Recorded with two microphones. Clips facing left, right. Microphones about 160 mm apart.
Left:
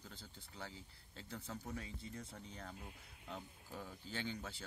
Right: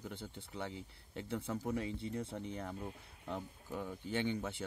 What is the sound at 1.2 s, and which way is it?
Speech, 60° right (ahead or behind).